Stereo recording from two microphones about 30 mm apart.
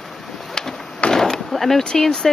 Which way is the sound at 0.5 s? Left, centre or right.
Centre.